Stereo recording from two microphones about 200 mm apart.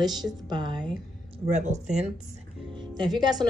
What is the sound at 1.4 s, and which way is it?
Speech, 35° right (ahead or behind).